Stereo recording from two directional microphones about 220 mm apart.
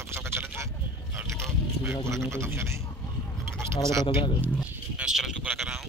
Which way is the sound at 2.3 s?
10° right (ahead or behind).